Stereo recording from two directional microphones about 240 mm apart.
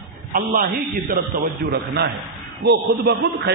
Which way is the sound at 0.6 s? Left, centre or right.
Right.